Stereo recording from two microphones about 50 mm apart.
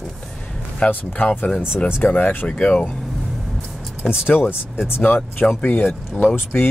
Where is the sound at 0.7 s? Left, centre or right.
Left.